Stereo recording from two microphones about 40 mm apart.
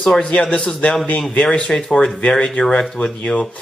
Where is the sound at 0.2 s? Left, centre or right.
Left.